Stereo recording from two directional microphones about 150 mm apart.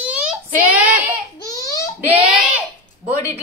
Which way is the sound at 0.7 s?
10° right (ahead or behind).